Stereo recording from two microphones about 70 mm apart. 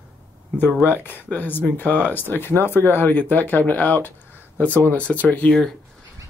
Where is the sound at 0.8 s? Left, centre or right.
Left.